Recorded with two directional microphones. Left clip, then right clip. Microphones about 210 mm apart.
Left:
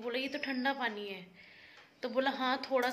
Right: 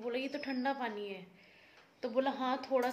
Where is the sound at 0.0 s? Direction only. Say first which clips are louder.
Left 2 dB; 5° right (ahead or behind).